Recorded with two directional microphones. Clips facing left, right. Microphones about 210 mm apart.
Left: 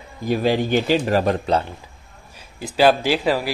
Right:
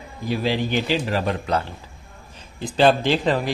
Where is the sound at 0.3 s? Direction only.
45° left (ahead or behind).